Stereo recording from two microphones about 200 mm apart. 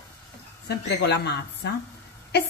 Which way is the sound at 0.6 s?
60° left (ahead or behind).